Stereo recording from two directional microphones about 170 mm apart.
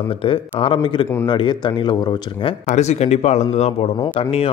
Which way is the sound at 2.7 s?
40° left (ahead or behind).